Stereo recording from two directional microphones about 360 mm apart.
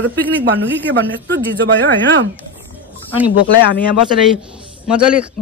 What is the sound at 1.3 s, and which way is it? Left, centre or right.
Speech, right.